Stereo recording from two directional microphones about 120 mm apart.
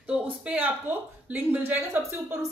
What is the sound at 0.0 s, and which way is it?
Speech, 15° right (ahead or behind).